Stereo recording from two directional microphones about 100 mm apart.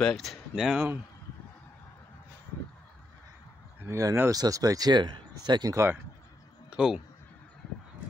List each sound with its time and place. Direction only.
0.0 s speech: 5° left (ahead or behind)
3.8 s speech: 30° right (ahead or behind)
6.7 s a sound: 10° right (ahead or behind)